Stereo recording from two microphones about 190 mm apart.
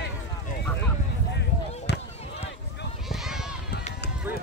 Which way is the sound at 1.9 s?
60° left (ahead or behind).